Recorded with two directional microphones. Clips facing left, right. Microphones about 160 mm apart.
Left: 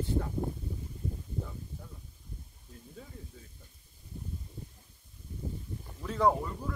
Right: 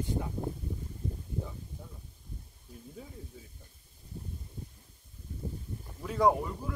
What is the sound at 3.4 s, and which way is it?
Speech, 10° right (ahead or behind).